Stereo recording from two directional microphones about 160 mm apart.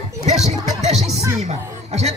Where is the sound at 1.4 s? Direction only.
45° right (ahead or behind).